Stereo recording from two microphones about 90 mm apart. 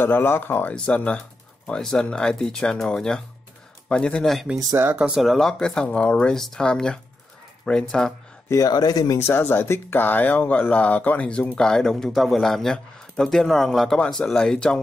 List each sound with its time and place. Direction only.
0.0 s speech: 25° left (ahead or behind); by 4.5 s 5° left (ahead or behind)
4.9 s speech: 15° right (ahead or behind)
5.2 s speech: centre (ahead or behind)
8.5 s speech: 40° left (ahead or behind)
9.2 s speech: 20° left (ahead or behind)